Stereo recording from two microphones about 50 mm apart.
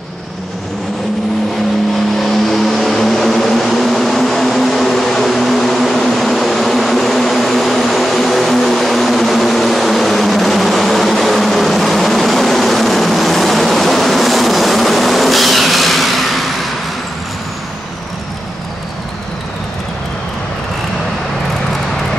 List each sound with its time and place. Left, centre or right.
2.1 s vehicle: centre